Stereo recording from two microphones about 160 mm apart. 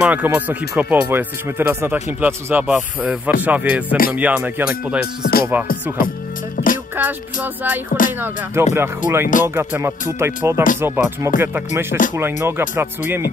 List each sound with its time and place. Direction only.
0.0 s speech: 10° right (ahead or behind)
5.9 s music: 60° left (ahead or behind)
7.0 s speech: 10° right (ahead or behind)